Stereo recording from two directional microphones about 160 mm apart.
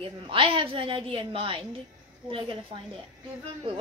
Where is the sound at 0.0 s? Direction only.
35° right (ahead or behind).